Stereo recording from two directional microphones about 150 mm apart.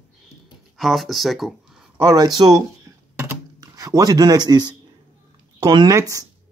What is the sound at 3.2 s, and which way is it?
Computer keyboard, 20° right (ahead or behind).